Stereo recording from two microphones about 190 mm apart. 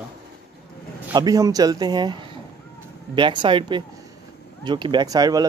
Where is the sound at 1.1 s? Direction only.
20° right (ahead or behind).